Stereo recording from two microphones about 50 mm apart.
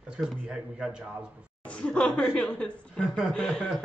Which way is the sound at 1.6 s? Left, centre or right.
Left.